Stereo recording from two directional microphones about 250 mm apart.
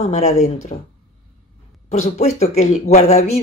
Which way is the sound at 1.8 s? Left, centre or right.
Left.